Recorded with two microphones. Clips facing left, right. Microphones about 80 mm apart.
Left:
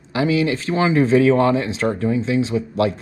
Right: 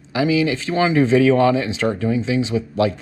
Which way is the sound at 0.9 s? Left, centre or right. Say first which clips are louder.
Even; left.